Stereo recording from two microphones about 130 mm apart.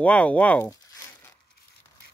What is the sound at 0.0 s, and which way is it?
Speech, 10° left (ahead or behind).